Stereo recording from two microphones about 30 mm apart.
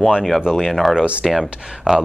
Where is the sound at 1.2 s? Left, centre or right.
Centre.